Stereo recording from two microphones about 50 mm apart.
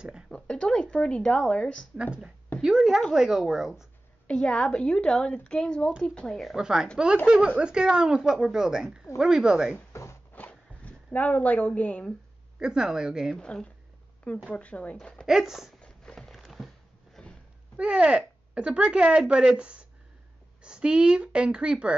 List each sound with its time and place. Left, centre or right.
0.3 s a sound: centre
1.5 s a woman's voice: left
2.6 s speech: centre
4.3 s a woman's voice: centre
6.5 s speech: centre
10.3 s a sound: left
11.1 s a woman's voice: left
12.5 s speech: centre
13.4 s speech: centre
14.5 s a woman's voice: left
15.2 s speech: centre
16.2 s a sound: centre
17.7 s speech: centre